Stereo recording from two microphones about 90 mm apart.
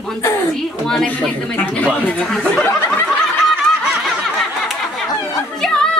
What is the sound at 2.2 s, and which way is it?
Speech, 5° left (ahead or behind).